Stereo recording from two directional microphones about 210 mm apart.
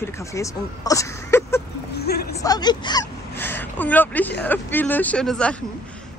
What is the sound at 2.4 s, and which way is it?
Speech, 20° left (ahead or behind).